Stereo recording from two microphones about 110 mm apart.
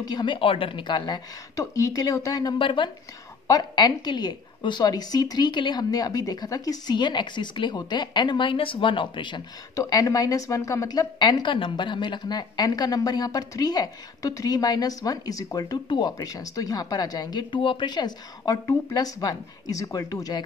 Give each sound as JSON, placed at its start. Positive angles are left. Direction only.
{"t": 0.0, "sound": "a woman's voice", "side_deg": 40}
{"t": 2.6, "sound": "speech", "side_deg": 45}
{"t": 3.4, "sound": "a woman's voice", "side_deg": 35}
{"t": 9.8, "sound": "a woman's voice", "side_deg": 35}